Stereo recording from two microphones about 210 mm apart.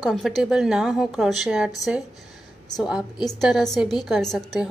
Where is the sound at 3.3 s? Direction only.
Centre (ahead or behind).